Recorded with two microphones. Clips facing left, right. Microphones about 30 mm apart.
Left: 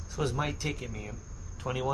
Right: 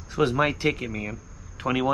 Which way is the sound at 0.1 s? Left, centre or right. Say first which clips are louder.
Right 9 dB; right.